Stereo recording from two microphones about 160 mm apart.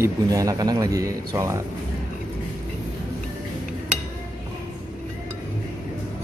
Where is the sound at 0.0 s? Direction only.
20° right (ahead or behind).